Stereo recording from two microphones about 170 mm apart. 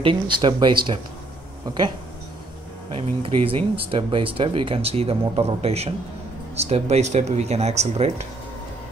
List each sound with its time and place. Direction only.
0.0 s speech: 30° right (ahead or behind)
3.2 s speech: 35° right (ahead or behind)